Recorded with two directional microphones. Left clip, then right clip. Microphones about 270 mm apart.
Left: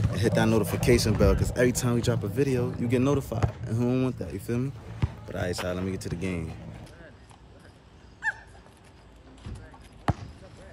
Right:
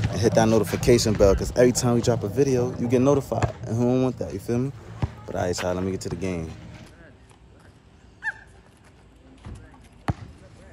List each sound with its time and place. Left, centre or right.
0.1 s speech: centre
8.2 s goose: left
10.1 s basketball bounce: left